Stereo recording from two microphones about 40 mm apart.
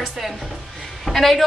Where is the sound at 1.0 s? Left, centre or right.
Centre.